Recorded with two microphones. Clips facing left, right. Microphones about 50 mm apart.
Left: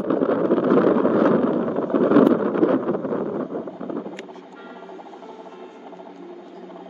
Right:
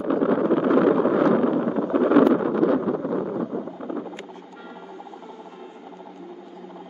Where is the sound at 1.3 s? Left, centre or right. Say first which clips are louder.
Left 1 dB; centre.